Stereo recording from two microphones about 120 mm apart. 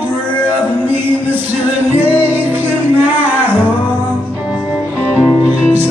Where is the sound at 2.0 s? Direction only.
15° right (ahead or behind).